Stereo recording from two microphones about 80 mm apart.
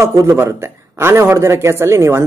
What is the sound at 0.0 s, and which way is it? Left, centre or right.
Speech, right.